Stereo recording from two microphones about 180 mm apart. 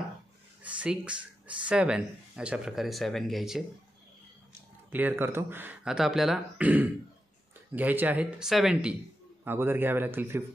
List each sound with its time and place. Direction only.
0.7 s a sound: 5° right (ahead or behind)
1.6 s speech: 5° right (ahead or behind)
4.9 s speech: 10° right (ahead or behind)
9.4 s speech: 10° right (ahead or behind)